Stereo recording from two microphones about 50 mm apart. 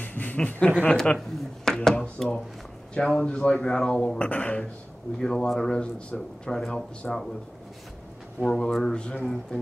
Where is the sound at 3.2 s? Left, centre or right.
Left.